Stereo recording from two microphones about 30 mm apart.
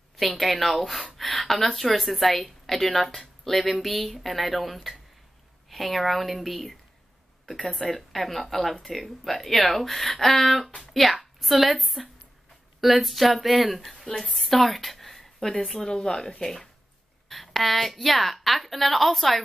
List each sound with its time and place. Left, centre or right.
0.4 s a woman's voice: centre
7.8 s a woman's voice: centre
14.0 s a woman's voice: left
14.3 s speech: centre
15.8 s speech: left
16.3 s a woman's voice: centre